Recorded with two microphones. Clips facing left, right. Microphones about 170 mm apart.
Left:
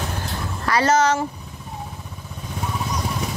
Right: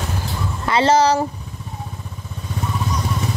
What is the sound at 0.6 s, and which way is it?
Speech, 25° right (ahead or behind).